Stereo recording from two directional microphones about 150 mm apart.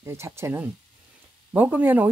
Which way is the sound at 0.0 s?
20° right (ahead or behind).